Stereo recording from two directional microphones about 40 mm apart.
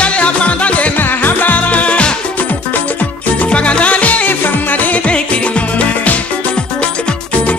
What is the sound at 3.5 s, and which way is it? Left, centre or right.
Music, left.